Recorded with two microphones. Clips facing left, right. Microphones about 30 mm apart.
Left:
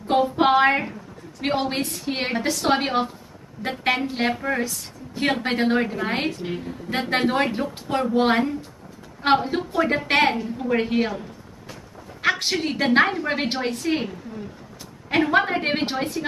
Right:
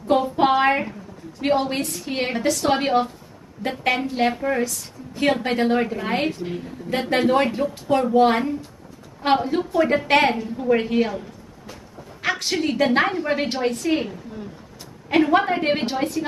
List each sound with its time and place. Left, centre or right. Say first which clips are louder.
0.1 s a woman's voice: even; centre
5.1 s a woman's voice: right 2 dB; centre
6.4 s a woman's voice: even; left
10.3 s a woman's voice: right 3 dB; centre
12.2 s a sound: left 2 dB; left
12.4 s a woman's voice: right 2 dB; centre
15.0 s a woman's voice: right 2 dB; centre
15.8 s a woman's voice: right 2 dB; left